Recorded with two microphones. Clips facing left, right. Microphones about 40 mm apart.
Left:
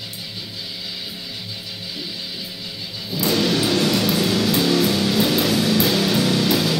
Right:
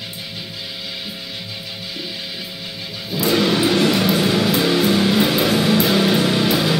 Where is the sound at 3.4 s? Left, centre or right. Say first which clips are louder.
Right 3 dB; right.